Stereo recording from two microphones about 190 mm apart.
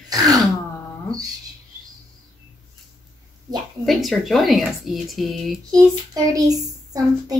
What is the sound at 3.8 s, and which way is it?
Speech, centre (ahead or behind).